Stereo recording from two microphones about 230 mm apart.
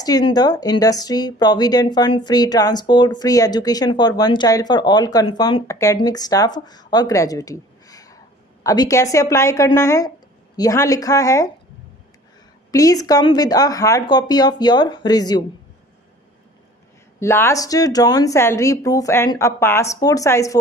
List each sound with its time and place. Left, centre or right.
0.0 s speech: centre
12.7 s speech: centre
17.2 s speech: centre